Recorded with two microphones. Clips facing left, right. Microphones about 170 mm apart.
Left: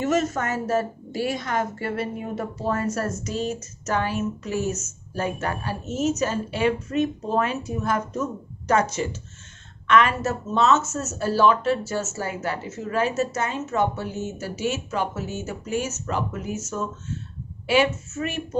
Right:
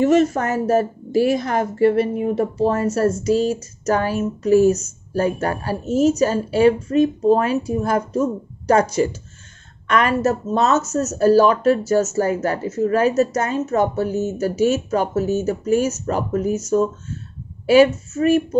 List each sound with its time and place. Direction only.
0.0 s speech: 35° right (ahead or behind)